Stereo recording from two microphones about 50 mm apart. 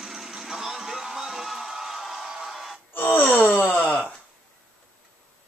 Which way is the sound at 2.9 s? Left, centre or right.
Left.